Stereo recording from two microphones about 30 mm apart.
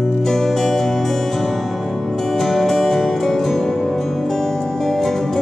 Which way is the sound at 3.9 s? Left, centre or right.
Centre.